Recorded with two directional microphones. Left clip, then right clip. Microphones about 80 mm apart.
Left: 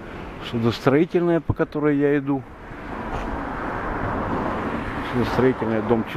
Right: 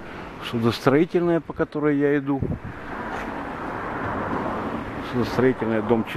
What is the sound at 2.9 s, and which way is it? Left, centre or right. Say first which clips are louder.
Vehicle: even; right.